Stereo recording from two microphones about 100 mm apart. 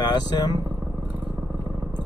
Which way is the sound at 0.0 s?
40° left (ahead or behind).